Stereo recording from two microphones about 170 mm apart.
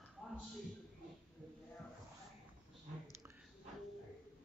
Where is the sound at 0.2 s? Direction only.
Centre (ahead or behind).